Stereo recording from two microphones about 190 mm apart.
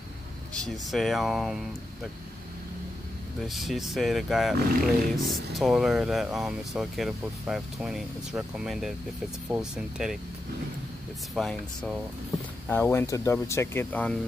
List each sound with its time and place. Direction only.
0.6 s speech: centre (ahead or behind)
3.4 s speech: centre (ahead or behind)
11.3 s speech: centre (ahead or behind)